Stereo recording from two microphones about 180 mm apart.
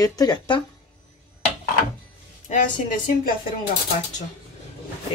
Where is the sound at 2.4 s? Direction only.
45° left (ahead or behind).